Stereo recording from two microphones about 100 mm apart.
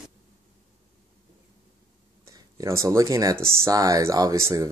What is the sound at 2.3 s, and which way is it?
Speech, 35° right (ahead or behind).